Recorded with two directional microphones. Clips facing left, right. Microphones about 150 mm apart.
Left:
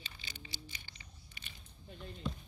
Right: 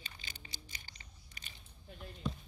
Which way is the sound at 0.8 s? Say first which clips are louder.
Left 1 dB; 40° right (ahead or behind).